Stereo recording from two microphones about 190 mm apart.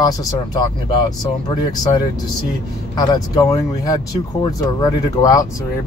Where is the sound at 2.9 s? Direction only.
20° left (ahead or behind).